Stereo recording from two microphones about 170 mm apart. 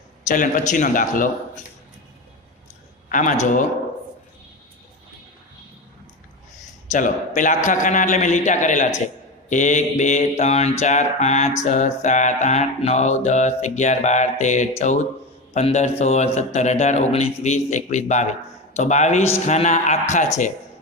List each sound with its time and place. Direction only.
0.3 s a man's voice: 50° left (ahead or behind)
3.1 s a man's voice: 50° left (ahead or behind)
6.9 s a man's voice: 50° left (ahead or behind)